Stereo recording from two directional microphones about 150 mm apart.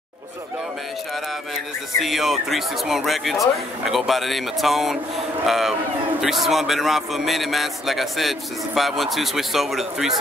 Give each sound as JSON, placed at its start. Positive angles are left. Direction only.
{"t": 2.0, "sound": "a man's voice", "side_deg": 0}